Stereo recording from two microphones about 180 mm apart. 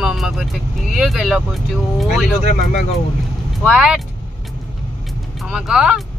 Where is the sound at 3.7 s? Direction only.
5° right (ahead or behind).